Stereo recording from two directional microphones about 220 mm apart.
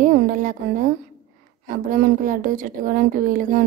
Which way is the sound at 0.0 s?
35° right (ahead or behind).